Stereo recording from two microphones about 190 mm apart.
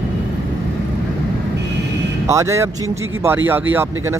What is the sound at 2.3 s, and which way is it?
Speech, 15° right (ahead or behind).